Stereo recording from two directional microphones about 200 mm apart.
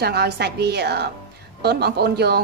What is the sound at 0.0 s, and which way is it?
A woman's voice, 55° right (ahead or behind).